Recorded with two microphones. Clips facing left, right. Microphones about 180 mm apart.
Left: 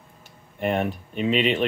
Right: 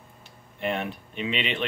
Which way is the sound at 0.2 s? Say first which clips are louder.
Left 4 dB; 45° left (ahead or behind).